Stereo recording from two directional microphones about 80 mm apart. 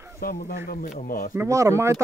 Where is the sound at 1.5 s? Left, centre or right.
Right.